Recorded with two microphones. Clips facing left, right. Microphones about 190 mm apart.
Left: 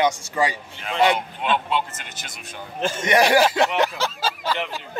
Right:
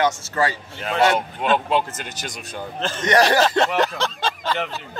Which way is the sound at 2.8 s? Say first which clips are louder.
Right 1 dB; 10° left (ahead or behind).